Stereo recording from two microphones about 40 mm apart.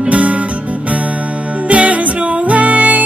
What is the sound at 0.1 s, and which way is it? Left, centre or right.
Music, right.